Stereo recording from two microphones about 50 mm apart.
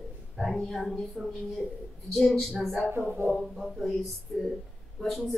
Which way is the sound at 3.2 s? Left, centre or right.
Right.